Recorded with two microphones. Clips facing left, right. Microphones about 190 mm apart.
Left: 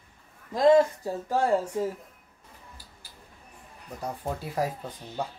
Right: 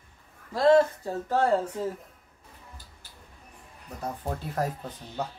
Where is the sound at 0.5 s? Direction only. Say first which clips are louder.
Left 1 dB; 15° left (ahead or behind).